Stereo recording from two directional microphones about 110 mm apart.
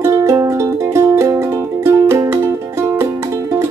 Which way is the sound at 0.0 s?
25° right (ahead or behind).